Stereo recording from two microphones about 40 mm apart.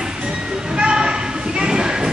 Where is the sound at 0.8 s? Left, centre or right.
Right.